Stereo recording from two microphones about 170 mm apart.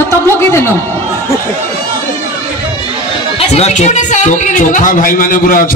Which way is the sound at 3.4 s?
40° left (ahead or behind).